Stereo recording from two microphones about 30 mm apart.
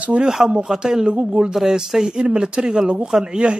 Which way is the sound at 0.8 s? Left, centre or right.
Right.